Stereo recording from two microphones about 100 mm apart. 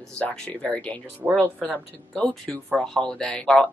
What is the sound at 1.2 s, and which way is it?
Speech, 30° right (ahead or behind).